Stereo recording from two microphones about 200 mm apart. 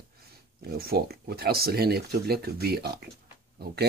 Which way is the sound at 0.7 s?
50° right (ahead or behind).